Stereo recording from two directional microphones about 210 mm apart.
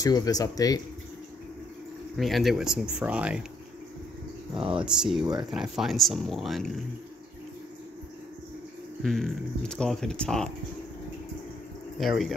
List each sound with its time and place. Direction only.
0.0 s speech: 15° left (ahead or behind)
2.1 s speech: centre (ahead or behind)
4.8 s speech: 5° right (ahead or behind)
9.0 s speech: centre (ahead or behind)
12.0 s speech: centre (ahead or behind)